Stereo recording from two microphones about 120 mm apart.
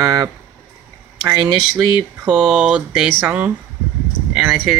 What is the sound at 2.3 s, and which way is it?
Speech, 5° right (ahead or behind).